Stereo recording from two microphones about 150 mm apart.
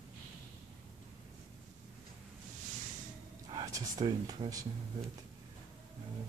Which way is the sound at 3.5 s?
25° right (ahead or behind).